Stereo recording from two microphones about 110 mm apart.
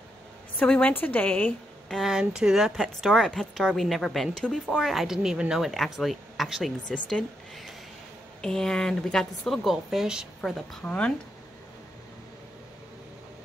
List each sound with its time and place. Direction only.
0.6 s speech: 15° left (ahead or behind)
1.9 s a woman's voice: centre (ahead or behind)
10.5 s speech: 10° left (ahead or behind)